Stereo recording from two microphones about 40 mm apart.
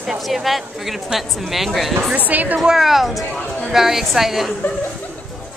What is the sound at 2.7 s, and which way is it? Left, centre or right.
A woman's voice, centre.